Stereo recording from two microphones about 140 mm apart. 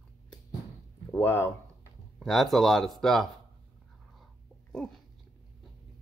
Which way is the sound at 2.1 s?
Centre (ahead or behind).